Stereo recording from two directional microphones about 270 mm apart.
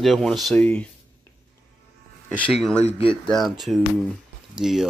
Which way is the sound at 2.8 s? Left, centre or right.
Left.